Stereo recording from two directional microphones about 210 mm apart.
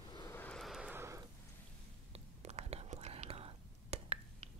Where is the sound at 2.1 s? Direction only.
30° right (ahead or behind).